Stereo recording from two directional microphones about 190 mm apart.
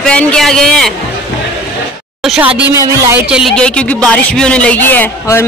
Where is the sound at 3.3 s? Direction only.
Centre (ahead or behind).